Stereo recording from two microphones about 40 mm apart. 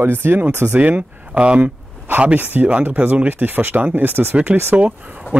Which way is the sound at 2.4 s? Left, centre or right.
Right.